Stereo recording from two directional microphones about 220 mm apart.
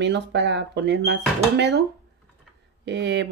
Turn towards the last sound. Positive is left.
turn(degrees=-55)  # may be behind; listen again after turning